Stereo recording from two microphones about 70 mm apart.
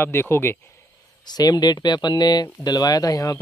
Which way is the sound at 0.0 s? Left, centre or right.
Left.